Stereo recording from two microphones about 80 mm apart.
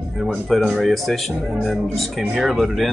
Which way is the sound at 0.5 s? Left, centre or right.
Centre.